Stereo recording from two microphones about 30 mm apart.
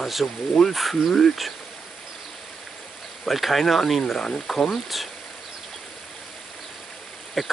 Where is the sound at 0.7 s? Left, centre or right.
Centre.